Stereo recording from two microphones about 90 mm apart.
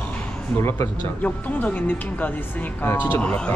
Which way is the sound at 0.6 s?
30° left (ahead or behind).